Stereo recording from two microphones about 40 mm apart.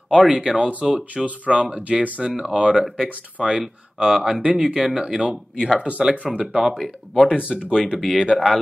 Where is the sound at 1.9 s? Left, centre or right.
Centre.